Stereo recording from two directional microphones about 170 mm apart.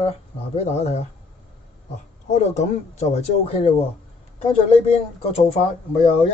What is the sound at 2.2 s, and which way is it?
Speech, 45° left (ahead or behind).